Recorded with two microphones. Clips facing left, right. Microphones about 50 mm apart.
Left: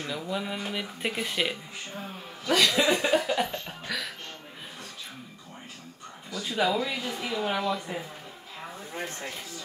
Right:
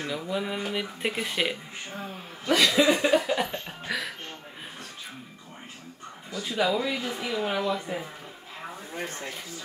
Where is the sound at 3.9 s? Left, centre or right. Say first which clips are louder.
Right 3 dB; right.